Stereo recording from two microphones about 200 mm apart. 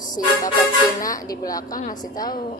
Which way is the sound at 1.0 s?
15° left (ahead or behind).